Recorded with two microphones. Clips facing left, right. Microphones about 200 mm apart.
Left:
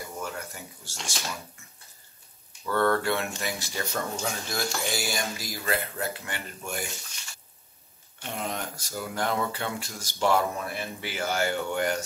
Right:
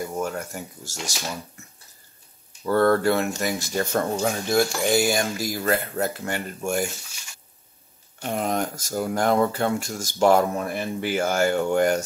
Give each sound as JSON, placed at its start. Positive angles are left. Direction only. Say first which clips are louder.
{"t": 0.0, "sound": "a sound", "louder": "right 8 dB", "side_deg": -45}
{"t": 2.6, "sound": "speech", "louder": "right 6 dB", "side_deg": -40}
{"t": 8.2, "sound": "speech", "louder": "right 8 dB", "side_deg": -50}